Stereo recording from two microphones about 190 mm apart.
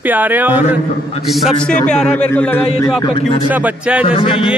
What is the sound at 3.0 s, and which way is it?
Speech, 25° left (ahead or behind).